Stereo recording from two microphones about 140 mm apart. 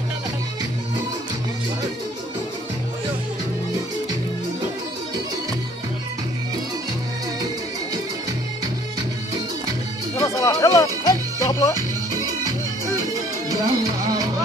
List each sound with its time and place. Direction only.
10.2 s music: 20° left (ahead or behind)
13.5 s music: 25° right (ahead or behind)